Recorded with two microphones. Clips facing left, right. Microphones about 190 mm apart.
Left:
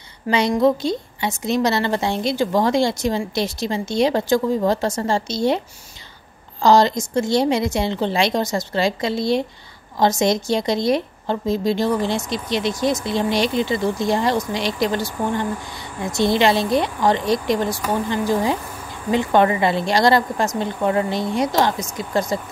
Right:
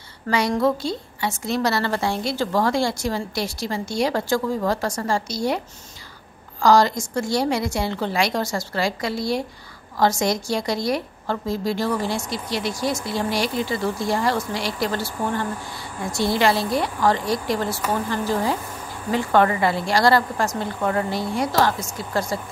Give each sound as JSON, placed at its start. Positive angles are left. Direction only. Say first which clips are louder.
{"t": 0.3, "sound": "a woman's voice", "louder": "left 3 dB", "side_deg": 20}
{"t": 6.6, "sound": "a woman's voice", "louder": "left 2 dB", "side_deg": 20}